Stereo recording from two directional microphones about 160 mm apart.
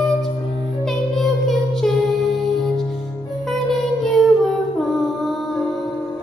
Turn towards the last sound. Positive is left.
turn(degrees=0)  # may be behind; listen again after turning